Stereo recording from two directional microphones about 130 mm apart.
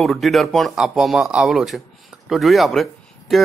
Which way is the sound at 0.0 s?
Centre (ahead or behind).